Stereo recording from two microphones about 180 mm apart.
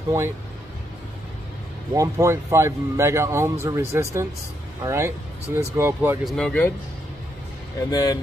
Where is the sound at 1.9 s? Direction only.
15° right (ahead or behind).